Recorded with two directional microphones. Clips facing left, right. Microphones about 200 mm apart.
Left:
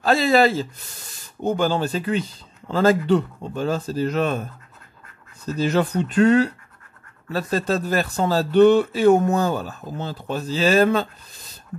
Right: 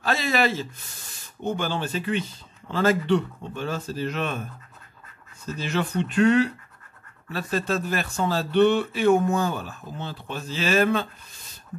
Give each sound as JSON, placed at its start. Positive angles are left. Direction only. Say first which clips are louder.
{"t": 0.0, "sound": "speech", "louder": "left 7 dB", "side_deg": 35}
{"t": 5.4, "sound": "speech", "louder": "left 7 dB", "side_deg": 40}